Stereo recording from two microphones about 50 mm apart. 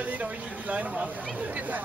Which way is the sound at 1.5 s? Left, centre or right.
Right.